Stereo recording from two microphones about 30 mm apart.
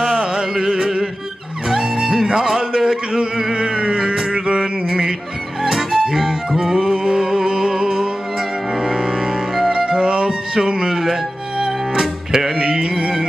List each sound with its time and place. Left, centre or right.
0.1 s music: right
3.1 s a sound: right
3.5 s music: right; by 6.7 s centre
6.7 s music: right